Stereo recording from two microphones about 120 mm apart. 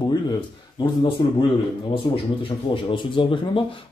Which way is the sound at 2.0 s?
45° left (ahead or behind).